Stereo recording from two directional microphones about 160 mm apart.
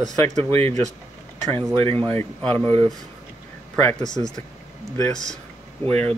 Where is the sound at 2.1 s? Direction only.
10° left (ahead or behind).